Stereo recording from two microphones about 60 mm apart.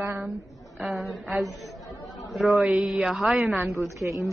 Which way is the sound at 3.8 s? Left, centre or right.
Right.